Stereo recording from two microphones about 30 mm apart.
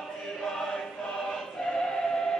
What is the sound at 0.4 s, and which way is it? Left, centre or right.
Choir, centre.